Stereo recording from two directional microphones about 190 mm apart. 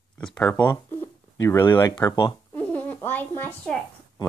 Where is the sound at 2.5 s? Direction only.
10° left (ahead or behind).